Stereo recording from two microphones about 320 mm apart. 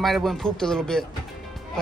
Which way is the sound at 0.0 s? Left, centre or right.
Centre.